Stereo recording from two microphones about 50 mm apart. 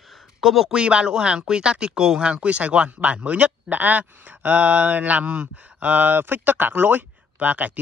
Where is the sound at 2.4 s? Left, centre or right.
Right.